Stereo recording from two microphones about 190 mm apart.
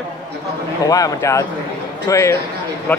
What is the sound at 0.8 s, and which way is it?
A man's voice, 20° left (ahead or behind).